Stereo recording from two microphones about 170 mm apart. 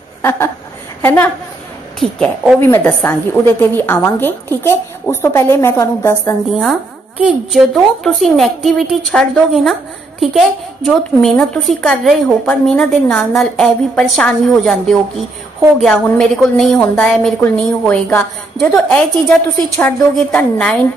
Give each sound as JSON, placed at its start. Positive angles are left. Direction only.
{"t": 0.2, "sound": "a sound", "side_deg": 15}
{"t": 1.0, "sound": "a woman's voice", "side_deg": 10}
{"t": 6.6, "sound": "a woman's voice", "side_deg": -5}